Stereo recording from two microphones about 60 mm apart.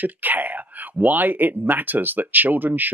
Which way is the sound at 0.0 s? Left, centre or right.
Right.